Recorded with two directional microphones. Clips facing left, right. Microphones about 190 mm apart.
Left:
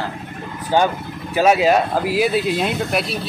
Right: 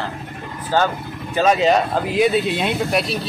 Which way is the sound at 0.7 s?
15° left (ahead or behind).